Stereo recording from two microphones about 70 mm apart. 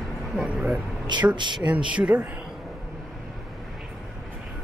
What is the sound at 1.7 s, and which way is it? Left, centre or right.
Speech, centre.